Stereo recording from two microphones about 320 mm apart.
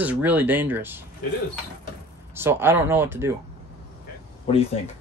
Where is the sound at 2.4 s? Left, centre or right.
Centre.